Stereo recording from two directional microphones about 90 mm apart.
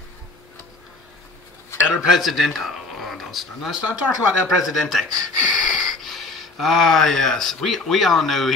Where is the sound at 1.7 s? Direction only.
30° left (ahead or behind).